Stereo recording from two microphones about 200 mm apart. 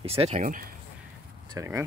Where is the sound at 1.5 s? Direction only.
15° right (ahead or behind).